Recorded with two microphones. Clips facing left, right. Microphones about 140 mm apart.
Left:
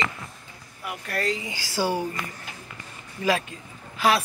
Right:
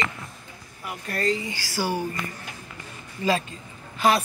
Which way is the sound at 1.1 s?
90° left.